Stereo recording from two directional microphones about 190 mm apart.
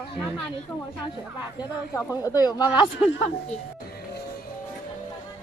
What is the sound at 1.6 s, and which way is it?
Speech, 20° left (ahead or behind).